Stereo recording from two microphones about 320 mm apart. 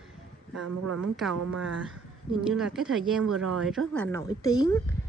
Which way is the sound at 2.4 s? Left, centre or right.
Centre.